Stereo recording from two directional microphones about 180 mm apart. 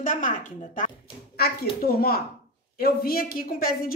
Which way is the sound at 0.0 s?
45° left (ahead or behind).